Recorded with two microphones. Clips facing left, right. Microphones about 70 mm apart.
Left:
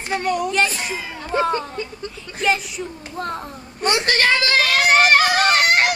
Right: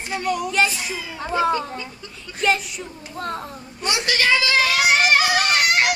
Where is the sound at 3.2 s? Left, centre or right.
Centre.